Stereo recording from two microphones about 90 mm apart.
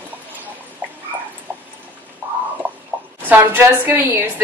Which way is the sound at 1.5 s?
20° right (ahead or behind).